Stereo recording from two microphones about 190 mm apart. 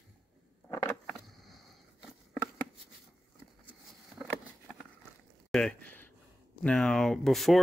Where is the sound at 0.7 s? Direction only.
15° left (ahead or behind).